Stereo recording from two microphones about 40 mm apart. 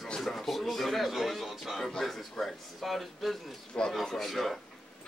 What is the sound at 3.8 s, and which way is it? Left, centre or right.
Speech, left.